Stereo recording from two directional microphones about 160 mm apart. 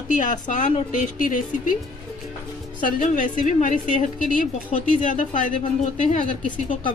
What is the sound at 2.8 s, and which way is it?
A woman's voice, 55° left (ahead or behind).